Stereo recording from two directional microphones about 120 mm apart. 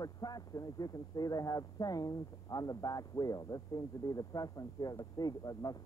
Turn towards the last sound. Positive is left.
turn(degrees=30)  # may be behind; listen again after turning